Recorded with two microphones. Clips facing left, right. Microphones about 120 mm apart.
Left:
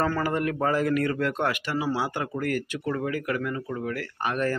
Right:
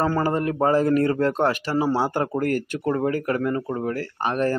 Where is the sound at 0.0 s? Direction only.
30° right (ahead or behind).